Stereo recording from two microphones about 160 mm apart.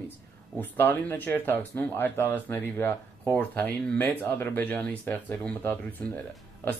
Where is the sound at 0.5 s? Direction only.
10° left (ahead or behind).